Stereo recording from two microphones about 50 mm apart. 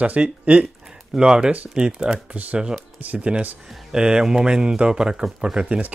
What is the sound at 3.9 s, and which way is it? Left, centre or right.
Speech, centre.